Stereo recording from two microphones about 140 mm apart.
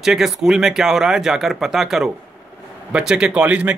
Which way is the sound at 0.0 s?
5° right (ahead or behind).